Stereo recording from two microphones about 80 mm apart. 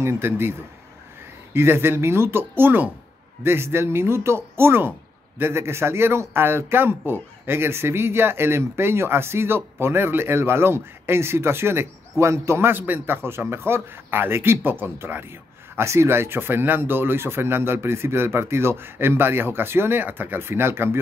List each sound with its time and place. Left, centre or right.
0.0 s speech: right